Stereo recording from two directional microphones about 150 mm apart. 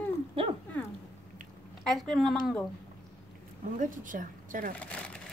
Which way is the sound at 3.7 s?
60° right (ahead or behind).